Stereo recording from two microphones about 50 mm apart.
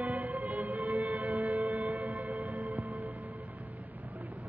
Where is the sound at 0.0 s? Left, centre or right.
Right.